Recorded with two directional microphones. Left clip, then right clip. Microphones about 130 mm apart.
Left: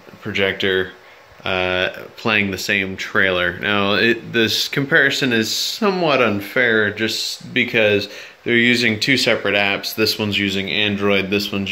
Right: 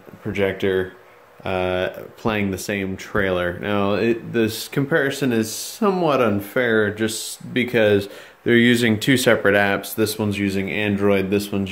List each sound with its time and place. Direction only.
0.3 s speech: 25° right (ahead or behind); by 9.8 s 45° right (ahead or behind)
9.9 s speech: 20° right (ahead or behind)